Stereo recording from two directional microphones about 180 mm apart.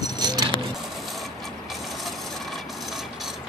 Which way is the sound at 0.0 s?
25° right (ahead or behind).